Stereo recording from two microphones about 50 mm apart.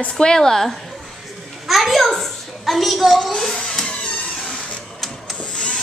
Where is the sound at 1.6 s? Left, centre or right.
Centre.